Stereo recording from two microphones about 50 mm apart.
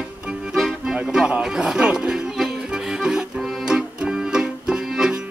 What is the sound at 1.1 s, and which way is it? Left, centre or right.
Music, centre.